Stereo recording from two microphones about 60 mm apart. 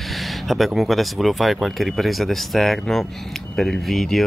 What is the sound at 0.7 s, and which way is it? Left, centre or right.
Speech, centre.